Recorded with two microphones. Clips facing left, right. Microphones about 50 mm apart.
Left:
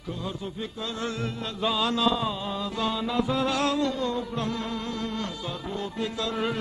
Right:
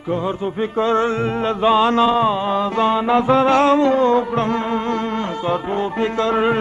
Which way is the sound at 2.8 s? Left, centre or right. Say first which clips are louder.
Right 10 dB; right.